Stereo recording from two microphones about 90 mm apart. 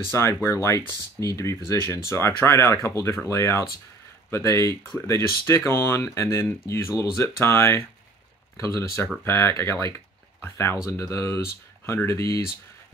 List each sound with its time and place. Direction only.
0.1 s speech: 30° left (ahead or behind)